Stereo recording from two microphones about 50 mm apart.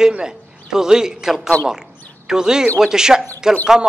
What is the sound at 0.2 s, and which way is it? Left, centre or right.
A man's voice, centre.